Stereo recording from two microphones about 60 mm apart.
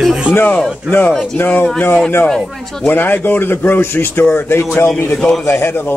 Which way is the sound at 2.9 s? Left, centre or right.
Left.